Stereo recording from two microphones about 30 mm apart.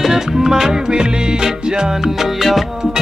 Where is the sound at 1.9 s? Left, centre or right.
Centre.